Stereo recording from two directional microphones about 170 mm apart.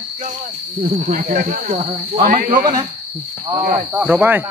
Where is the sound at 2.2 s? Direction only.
55° right (ahead or behind).